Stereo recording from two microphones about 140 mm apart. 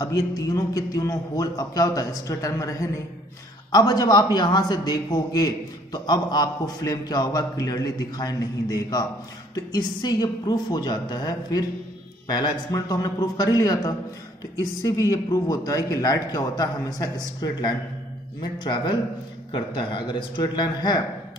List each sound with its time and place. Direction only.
0.0 s a man's voice: 25° left (ahead or behind)